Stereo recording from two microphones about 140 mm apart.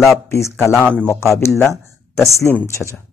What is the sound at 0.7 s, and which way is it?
Speech, 5° left (ahead or behind).